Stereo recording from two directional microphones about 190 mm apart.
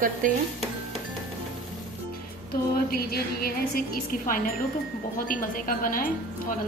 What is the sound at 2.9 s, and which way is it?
A woman's voice, 50° left (ahead or behind).